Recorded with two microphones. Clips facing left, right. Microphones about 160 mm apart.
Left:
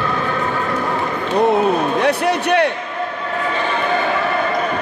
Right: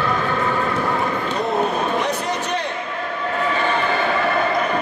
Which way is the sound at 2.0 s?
65° left (ahead or behind).